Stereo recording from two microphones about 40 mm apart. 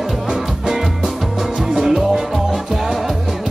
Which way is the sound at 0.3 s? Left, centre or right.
Centre.